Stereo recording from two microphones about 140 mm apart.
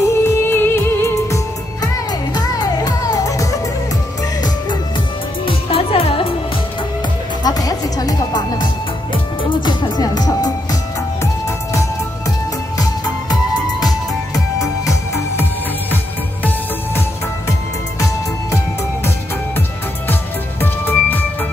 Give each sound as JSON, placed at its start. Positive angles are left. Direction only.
{"t": 0.1, "sound": "music", "side_deg": 15}
{"t": 5.4, "sound": "music", "side_deg": 40}
{"t": 7.4, "sound": "music", "side_deg": 25}
{"t": 17.9, "sound": "music", "side_deg": 20}
{"t": 20.6, "sound": "music", "side_deg": 15}